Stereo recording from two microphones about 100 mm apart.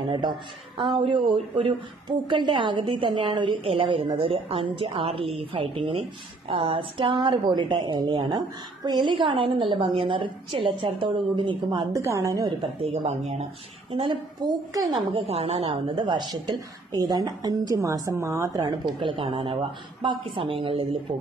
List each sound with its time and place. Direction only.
0.0 s a woman's voice: 60° right (ahead or behind)
11.9 s a woman's voice: 30° right (ahead or behind)
14.4 s a woman's voice: 40° right (ahead or behind)
15.1 s a woman's voice: 85° right; by 18.6 s 30° right (ahead or behind)
18.6 s a woman's voice: 55° right (ahead or behind)